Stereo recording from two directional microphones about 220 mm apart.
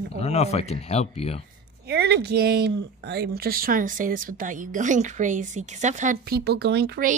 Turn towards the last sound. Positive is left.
turn(degrees=-50)  # may be behind; listen again after turning